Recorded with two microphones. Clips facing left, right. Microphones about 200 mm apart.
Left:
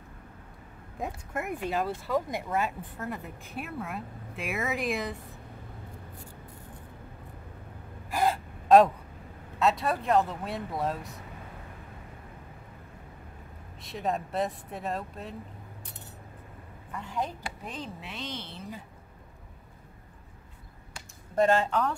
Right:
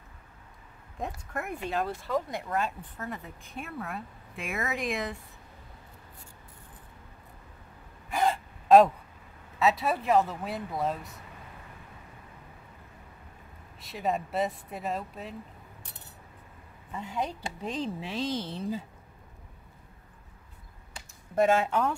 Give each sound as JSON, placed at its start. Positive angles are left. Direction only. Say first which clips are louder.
{"t": 0.9, "sound": "speech", "louder": "left 1 dB", "side_deg": 5}
{"t": 8.1, "sound": "gasp", "louder": "even", "side_deg": 0}
{"t": 9.6, "sound": "speech", "louder": "even", "side_deg": 0}
{"t": 13.7, "sound": "speech", "louder": "right 1 dB", "side_deg": 0}
{"t": 16.9, "sound": "speech", "louder": "right 1 dB", "side_deg": -20}
{"t": 21.4, "sound": "speech", "louder": "even", "side_deg": -5}